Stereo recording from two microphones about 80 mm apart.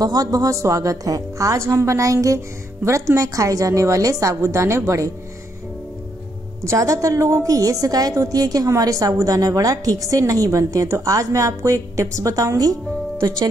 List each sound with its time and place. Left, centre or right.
0.0 s a woman's voice: right
6.6 s a woman's voice: right